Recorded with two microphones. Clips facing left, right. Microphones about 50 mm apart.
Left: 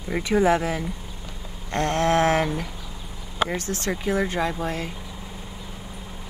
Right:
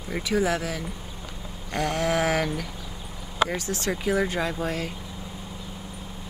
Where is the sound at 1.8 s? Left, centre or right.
Left.